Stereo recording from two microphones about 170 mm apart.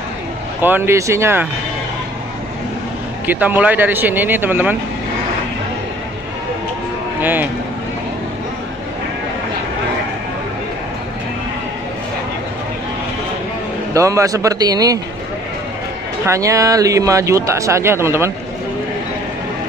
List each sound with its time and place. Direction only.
0.6 s speech: 10° right (ahead or behind)
3.3 s speech: 10° right (ahead or behind)
7.2 s speech: 10° right (ahead or behind)
13.9 s a man's voice: 20° right (ahead or behind)
16.3 s speech: 20° right (ahead or behind)